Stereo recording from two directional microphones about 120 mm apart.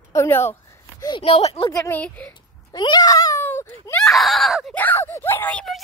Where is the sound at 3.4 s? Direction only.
20° left (ahead or behind).